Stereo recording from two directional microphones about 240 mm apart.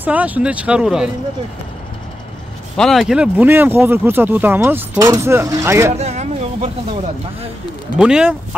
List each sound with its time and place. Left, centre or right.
0.0 s speech: centre
2.8 s speech: centre
5.9 s a sound: right
8.0 s speech: centre